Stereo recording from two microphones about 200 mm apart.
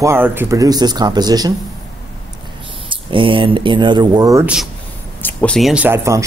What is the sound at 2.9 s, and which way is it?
Speech, 25° right (ahead or behind).